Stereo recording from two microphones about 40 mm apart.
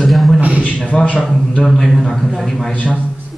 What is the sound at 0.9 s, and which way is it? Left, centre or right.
Speech, left.